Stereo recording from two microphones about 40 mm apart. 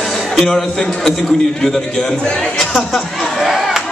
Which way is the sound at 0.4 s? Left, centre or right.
Centre.